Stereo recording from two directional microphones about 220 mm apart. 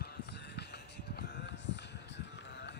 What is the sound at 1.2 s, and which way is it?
Music, 50° left (ahead or behind).